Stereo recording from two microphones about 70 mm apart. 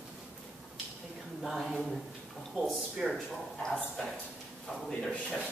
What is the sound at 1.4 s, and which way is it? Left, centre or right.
Speech, centre.